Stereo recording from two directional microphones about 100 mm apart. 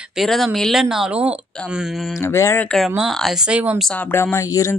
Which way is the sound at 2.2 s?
30° left (ahead or behind).